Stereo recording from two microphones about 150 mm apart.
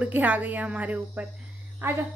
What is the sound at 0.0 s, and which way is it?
Speech, 10° right (ahead or behind).